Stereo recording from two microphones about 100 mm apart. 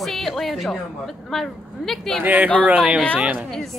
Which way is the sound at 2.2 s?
15° right (ahead or behind).